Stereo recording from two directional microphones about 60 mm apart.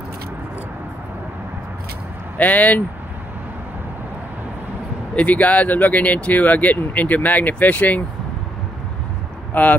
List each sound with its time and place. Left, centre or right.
2.3 s speech: left
5.1 s speech: left
9.5 s speech: left